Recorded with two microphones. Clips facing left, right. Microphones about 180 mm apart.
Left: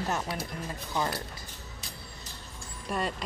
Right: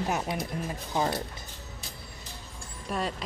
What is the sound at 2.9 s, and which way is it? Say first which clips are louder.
Speech: even; centre (ahead or behind).